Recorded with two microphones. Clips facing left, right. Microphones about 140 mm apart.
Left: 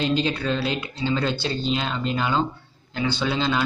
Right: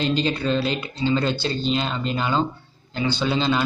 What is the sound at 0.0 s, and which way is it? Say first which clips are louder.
A man's voice: right 1 dB; 5° left (ahead or behind).